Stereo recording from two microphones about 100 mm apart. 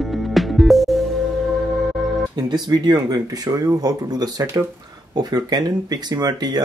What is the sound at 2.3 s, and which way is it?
Speech, 45° right (ahead or behind).